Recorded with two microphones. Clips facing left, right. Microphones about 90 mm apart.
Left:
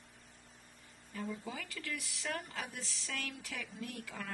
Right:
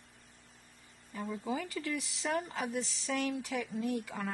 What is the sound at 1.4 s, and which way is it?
A woman's voice, 25° right (ahead or behind).